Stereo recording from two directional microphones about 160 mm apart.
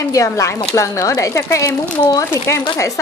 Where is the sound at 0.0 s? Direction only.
20° left (ahead or behind).